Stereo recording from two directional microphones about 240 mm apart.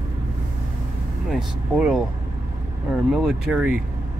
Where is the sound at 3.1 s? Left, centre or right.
Centre.